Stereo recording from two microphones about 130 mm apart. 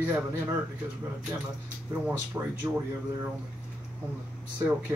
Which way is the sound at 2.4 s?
20° right (ahead or behind).